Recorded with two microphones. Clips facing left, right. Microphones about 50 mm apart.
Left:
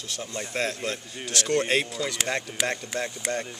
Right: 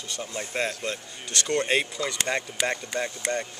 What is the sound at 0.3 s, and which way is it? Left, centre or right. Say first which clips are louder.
Speech: even; centre.